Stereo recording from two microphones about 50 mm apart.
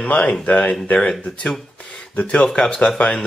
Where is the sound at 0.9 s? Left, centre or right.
Centre.